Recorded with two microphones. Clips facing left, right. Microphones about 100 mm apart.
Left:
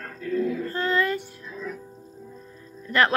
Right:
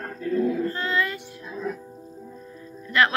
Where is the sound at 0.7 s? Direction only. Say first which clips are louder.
Left 2 dB; 45° left (ahead or behind).